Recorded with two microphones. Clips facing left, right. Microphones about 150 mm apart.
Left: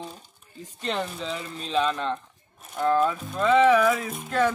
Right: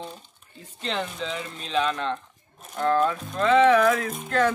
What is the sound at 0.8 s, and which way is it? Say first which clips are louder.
Speech: even; 5° left (ahead or behind).